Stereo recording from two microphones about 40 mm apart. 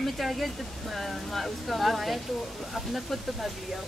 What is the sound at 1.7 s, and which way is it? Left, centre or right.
Speech, centre.